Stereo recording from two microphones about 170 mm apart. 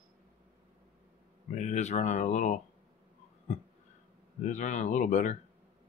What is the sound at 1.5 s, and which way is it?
Speech, 45° left (ahead or behind).